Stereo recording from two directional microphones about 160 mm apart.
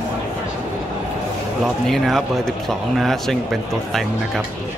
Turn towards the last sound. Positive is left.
turn(degrees=0)  # may be behind; listen again after turning